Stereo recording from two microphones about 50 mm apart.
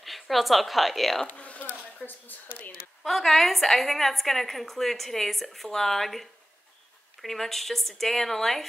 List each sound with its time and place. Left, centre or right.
0.0 s a woman's voice: centre
1.2 s a sound: left
2.0 s speech: left
3.0 s a woman's voice: centre